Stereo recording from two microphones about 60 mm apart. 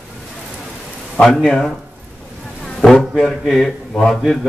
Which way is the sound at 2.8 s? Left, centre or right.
Centre.